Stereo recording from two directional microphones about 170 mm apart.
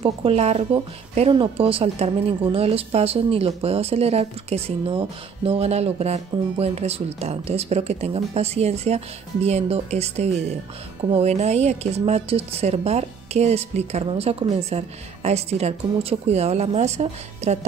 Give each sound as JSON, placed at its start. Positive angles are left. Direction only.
{"t": 0.0, "sound": "a woman's voice", "side_deg": -35}